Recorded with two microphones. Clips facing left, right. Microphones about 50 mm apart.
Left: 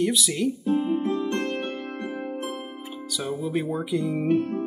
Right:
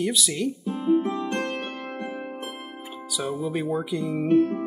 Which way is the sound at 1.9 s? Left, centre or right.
Right.